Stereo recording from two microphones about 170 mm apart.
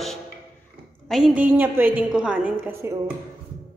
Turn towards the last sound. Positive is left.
turn(degrees=-15)  # may be behind; listen again after turning